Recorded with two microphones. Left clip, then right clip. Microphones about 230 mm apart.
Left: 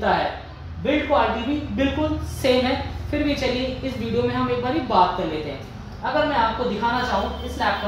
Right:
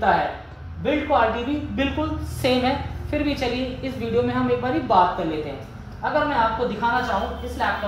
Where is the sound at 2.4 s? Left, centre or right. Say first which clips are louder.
Left 1 dB; centre.